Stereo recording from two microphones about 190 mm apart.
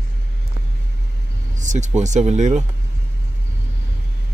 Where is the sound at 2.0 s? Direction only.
40° right (ahead or behind).